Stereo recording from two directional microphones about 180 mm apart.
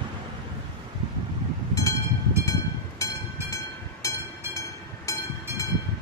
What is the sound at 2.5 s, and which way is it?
Train, 15° left (ahead or behind).